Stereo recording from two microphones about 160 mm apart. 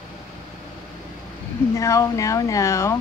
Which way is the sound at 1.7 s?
20° left (ahead or behind).